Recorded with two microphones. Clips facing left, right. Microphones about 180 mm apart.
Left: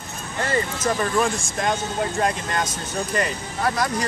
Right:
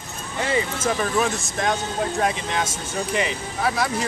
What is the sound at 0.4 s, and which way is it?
Speech, 10° right (ahead or behind).